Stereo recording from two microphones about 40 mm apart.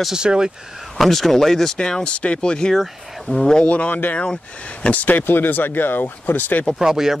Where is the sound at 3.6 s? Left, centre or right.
Left.